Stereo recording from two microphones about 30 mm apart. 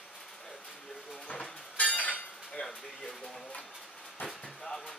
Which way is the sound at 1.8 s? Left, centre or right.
Left.